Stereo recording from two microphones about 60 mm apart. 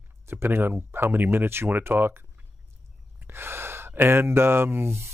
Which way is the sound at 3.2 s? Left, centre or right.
Right.